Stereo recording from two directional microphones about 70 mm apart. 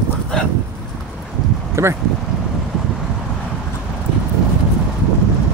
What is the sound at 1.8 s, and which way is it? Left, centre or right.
Speech, right.